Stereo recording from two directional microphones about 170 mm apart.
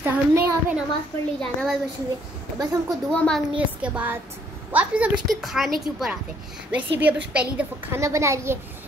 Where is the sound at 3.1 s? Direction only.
10° left (ahead or behind).